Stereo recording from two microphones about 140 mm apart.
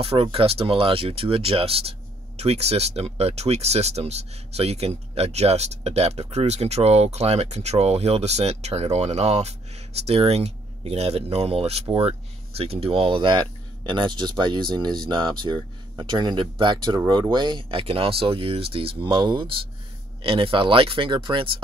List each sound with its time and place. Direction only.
0.0 s speech: 40° right (ahead or behind)